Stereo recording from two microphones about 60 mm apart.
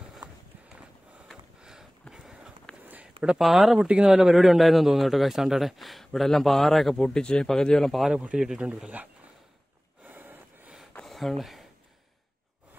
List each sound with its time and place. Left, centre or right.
1.6 s a sound: centre
2.8 s a sound: right
3.3 s speech: centre
3.7 s speech: centre
8.1 s speech: centre
10.0 s snort: right
11.1 s speech: centre